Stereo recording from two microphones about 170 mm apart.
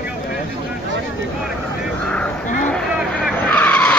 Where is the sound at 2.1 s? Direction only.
5° left (ahead or behind).